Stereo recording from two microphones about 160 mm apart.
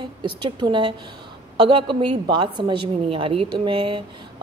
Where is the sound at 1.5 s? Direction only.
30° right (ahead or behind).